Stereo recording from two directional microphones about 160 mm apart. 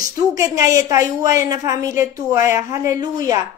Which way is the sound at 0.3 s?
20° right (ahead or behind).